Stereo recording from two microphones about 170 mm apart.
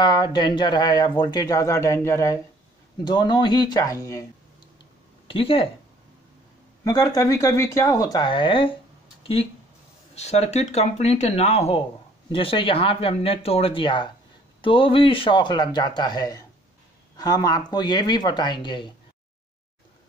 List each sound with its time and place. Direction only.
0.0 s speech: 25° left (ahead or behind)
5.3 s speech: 35° left (ahead or behind)
6.8 s speech: 20° left (ahead or behind)